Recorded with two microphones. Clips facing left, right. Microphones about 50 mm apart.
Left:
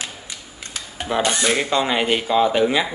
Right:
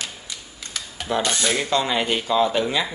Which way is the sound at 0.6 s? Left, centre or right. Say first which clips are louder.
Left 2 dB; left.